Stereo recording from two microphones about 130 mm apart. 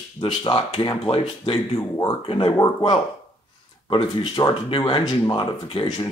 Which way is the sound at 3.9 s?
40° left (ahead or behind).